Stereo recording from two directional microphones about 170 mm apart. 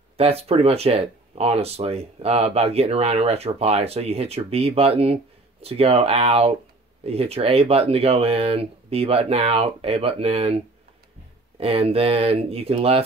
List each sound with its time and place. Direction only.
0.2 s speech: 35° right (ahead or behind)
11.6 s speech: 35° right (ahead or behind)